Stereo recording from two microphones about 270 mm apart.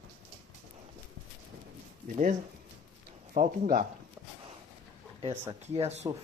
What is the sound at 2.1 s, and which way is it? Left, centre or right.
Speech, right.